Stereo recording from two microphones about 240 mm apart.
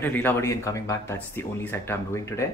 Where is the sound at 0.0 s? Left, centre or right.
Centre.